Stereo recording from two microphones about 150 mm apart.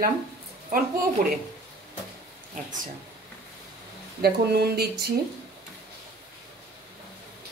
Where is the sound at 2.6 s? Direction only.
55° right (ahead or behind).